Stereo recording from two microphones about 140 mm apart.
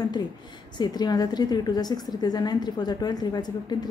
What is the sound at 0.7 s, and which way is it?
A woman's voice, 30° left (ahead or behind).